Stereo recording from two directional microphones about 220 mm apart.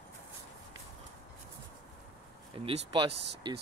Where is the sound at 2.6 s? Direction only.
25° right (ahead or behind).